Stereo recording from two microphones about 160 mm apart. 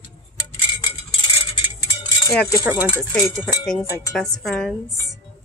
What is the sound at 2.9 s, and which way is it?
A woman's voice, 10° left (ahead or behind).